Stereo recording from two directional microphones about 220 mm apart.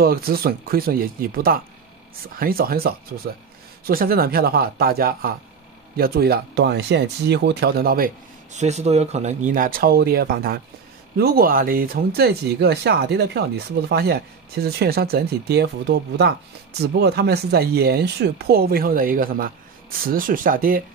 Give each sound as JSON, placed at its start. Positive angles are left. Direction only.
{"t": 0.0, "sound": "speech", "side_deg": -45}